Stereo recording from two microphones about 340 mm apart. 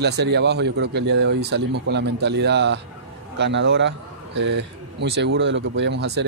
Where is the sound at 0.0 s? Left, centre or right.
Right.